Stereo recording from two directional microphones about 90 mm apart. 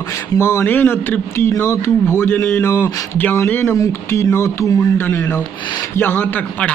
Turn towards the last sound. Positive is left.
turn(degrees=15)  # may be behind; listen again after turning